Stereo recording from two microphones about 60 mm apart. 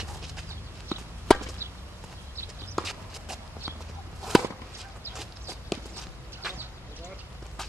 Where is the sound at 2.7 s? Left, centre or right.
Centre.